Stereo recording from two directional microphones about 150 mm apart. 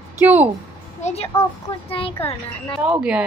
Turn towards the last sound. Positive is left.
turn(degrees=-5)  # may be behind; listen again after turning